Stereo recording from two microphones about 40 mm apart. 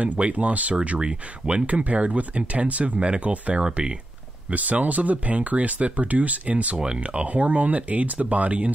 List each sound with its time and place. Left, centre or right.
0.0 s speech: right
0.8 s speech: right
1.7 s speech: right
4.5 s speech: right